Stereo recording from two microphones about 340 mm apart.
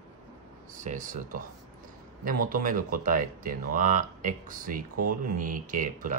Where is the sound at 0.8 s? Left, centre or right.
Right.